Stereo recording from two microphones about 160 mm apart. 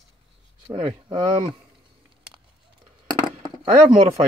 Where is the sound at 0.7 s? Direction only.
30° right (ahead or behind).